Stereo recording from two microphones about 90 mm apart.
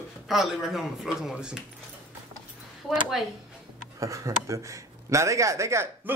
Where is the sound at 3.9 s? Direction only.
35° right (ahead or behind).